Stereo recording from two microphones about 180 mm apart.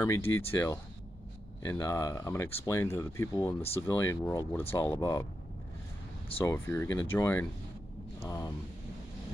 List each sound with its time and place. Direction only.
0.0 s speech: 15° left (ahead or behind)
6.4 s speech: 15° left (ahead or behind)